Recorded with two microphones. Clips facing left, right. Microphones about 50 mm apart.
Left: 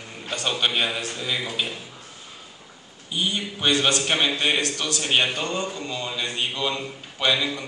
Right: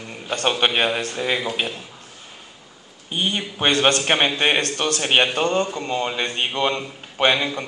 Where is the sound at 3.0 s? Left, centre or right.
Right.